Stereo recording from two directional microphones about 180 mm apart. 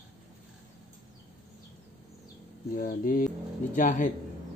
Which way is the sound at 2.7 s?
50° left (ahead or behind).